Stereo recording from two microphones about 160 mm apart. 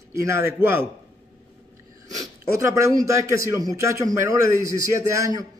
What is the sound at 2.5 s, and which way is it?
A man's voice, 20° right (ahead or behind).